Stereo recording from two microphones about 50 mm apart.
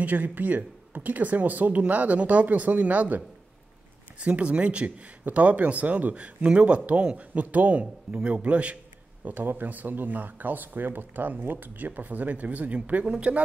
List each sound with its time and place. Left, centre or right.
0.0 s speech: right
4.2 s speech: right
9.2 s speech: right